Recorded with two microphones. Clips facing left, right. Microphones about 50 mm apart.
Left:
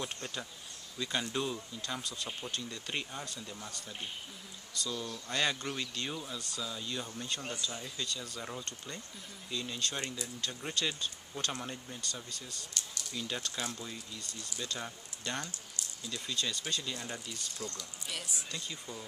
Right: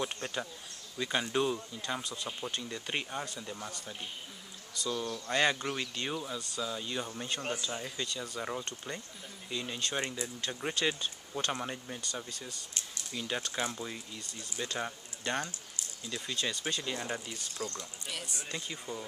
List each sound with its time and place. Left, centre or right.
0.0 s speech: centre
18.0 s speech: centre
18.5 s speech: centre